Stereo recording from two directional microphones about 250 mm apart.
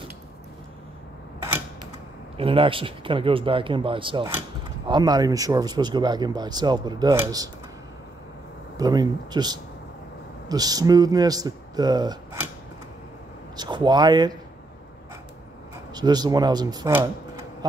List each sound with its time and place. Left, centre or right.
2.3 s speech: right
8.7 s speech: centre
13.6 s speech: centre
15.9 s speech: centre